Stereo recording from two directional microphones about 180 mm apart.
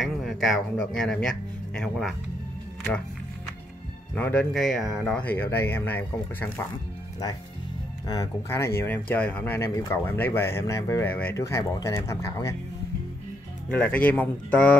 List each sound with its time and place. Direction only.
0.0 s speech: centre (ahead or behind)
4.1 s speech: 5° left (ahead or behind)
8.1 s speech: 15° left (ahead or behind)
13.7 s speech: 5° left (ahead or behind)